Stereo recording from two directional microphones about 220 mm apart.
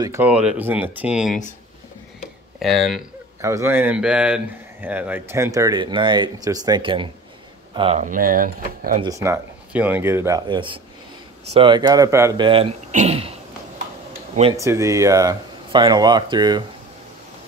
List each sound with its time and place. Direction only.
0.0 s speech: 10° right (ahead or behind)
2.6 s speech: centre (ahead or behind)
3.3 s speech: 15° right (ahead or behind)
8.0 s speech: 40° right (ahead or behind)
9.0 s speech: 15° right (ahead or behind); by 13.3 s 30° right (ahead or behind)
14.6 s speech: 15° right (ahead or behind)